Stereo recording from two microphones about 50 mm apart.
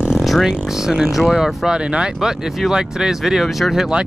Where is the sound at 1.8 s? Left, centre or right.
Centre.